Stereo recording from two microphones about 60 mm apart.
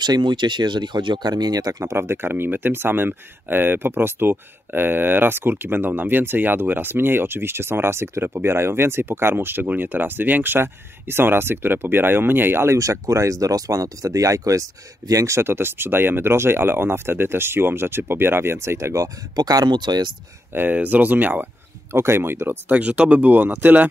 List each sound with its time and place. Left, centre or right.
1.3 s speech: right
1.8 s speech: right
12.7 s speech: right
15.5 s speech: right
20.5 s speech: right
21.9 s speech: right
22.7 s speech: right